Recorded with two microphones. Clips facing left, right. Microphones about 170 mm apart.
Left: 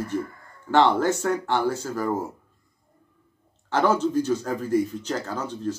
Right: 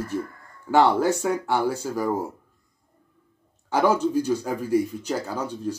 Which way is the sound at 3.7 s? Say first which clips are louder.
Right 1 dB; 10° right (ahead or behind).